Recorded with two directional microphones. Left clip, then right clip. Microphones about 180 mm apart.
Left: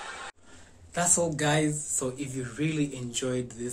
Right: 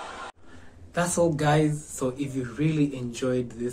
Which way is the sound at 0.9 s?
10° left (ahead or behind).